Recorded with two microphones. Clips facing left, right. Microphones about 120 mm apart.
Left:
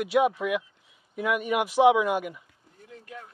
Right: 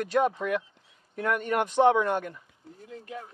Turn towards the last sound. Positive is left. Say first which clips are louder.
# right 4 dB
turn(degrees=-25)  # may be behind; listen again after turning